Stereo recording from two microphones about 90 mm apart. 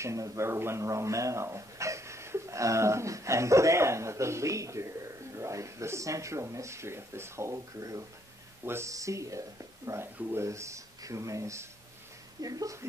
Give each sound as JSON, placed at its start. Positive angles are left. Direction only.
{"t": 0.0, "sound": "speech", "side_deg": -35}